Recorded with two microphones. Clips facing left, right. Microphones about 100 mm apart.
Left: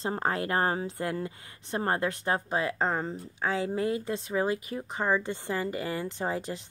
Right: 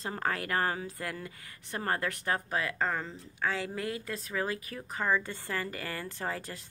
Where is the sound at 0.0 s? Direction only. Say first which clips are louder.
Left 4 dB; 30° left (ahead or behind).